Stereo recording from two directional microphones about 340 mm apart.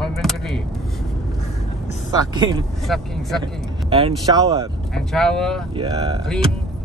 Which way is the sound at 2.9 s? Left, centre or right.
Centre.